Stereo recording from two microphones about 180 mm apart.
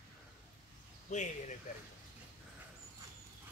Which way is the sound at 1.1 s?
40° left (ahead or behind).